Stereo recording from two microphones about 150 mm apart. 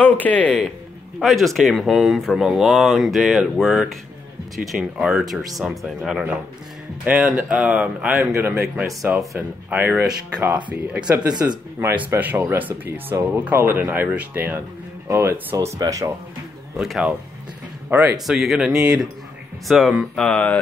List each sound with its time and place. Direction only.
0.0 s speech: 10° left (ahead or behind); by 8.5 s 15° right (ahead or behind)
9.0 s speech: centre (ahead or behind)
9.7 s speech: 10° right (ahead or behind)
16.7 s speech: 5° right (ahead or behind)
18.2 s speech: centre (ahead or behind)